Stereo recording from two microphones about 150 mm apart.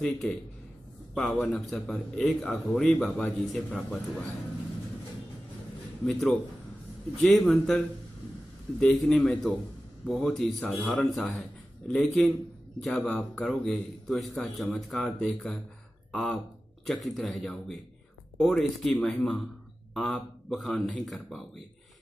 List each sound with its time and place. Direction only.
0.0 s a man's voice: centre (ahead or behind)
6.0 s a man's voice: centre (ahead or behind)